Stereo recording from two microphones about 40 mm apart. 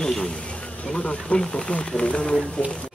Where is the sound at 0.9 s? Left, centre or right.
Left.